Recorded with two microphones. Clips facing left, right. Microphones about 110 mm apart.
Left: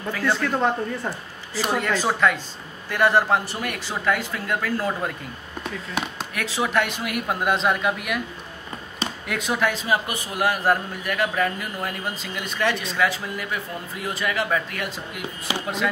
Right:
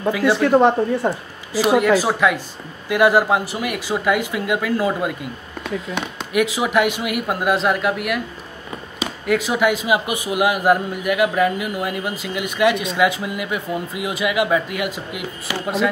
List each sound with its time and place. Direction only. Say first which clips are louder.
0.1 s speech: right 6 dB; 10° right (ahead or behind)
0.5 s a woman's voice: right 8 dB; 30° right (ahead or behind)
1.5 s speech: right 9 dB; 10° right (ahead or behind)
6.0 s speech: right 1 dB; 5° left (ahead or behind)
6.3 s speech: right 6 dB; 10° right (ahead or behind)